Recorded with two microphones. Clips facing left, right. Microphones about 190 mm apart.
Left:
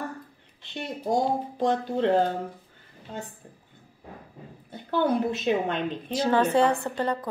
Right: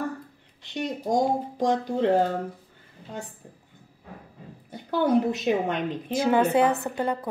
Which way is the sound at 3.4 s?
10° right (ahead or behind).